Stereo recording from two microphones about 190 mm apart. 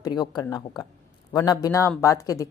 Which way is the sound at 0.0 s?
20° left (ahead or behind).